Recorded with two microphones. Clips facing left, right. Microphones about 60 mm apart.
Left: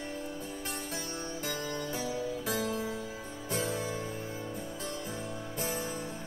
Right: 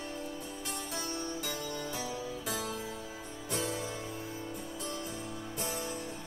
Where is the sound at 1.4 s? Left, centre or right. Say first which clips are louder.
Left 2 dB; left.